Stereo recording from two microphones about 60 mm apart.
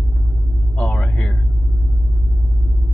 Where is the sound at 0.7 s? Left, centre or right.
Left.